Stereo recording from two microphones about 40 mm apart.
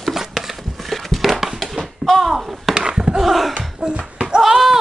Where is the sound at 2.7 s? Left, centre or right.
Centre.